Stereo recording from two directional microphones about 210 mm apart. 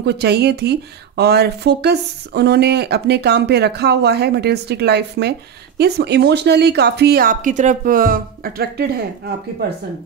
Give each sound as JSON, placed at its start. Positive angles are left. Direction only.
{"t": 0.0, "sound": "speech", "side_deg": -50}